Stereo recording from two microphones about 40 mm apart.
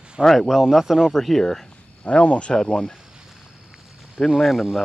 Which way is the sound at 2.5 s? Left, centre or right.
Centre.